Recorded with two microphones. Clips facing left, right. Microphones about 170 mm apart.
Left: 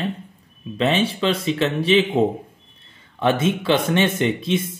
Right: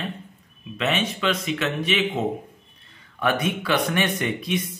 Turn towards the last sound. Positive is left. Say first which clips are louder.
# left 5 dB
turn(degrees=25)  # may be behind; listen again after turning